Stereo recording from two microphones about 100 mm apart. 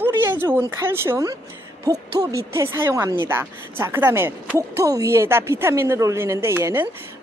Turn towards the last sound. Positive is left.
turn(degrees=-25)  # may be behind; listen again after turning